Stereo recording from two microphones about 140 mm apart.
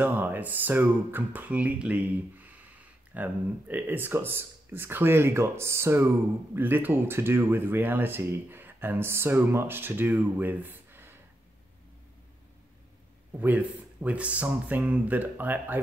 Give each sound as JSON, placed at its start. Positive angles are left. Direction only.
{"t": 0.0, "sound": "speech", "side_deg": -15}
{"t": 13.4, "sound": "speech", "side_deg": -10}